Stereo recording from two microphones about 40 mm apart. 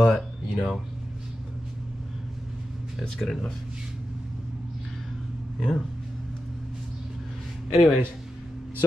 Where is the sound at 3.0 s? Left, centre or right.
Centre.